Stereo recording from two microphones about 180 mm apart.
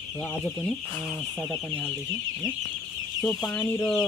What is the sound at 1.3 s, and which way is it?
Speech, 10° left (ahead or behind).